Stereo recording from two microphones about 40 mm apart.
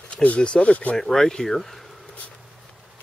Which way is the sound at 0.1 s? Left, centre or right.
Left.